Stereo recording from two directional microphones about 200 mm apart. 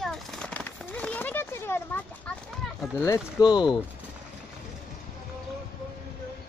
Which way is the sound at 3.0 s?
15° left (ahead or behind).